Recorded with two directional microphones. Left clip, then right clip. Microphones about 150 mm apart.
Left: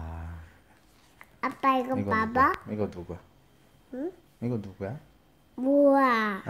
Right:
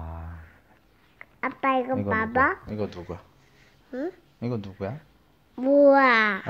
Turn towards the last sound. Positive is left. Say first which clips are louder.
# right 5 dB
turn(degrees=-5)  # may be behind; listen again after turning